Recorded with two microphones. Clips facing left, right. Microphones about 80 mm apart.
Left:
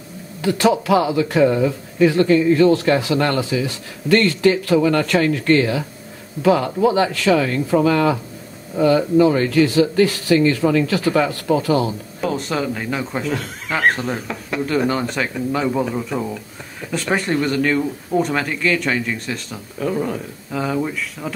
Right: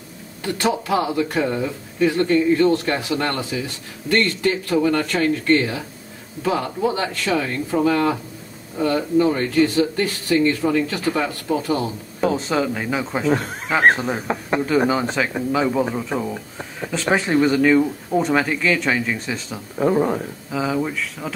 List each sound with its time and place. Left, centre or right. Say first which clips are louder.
0.4 s speech: left 5 dB; left
12.2 s speech: right 2 dB; centre
14.2 s speech: right 4 dB; right
14.9 s speech: right 1 dB; centre
16.9 s speech: right 1 dB; centre
19.8 s speech: right 4 dB; right
20.5 s speech: even; centre